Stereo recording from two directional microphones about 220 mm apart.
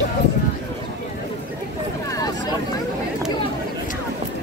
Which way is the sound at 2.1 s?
15° left (ahead or behind).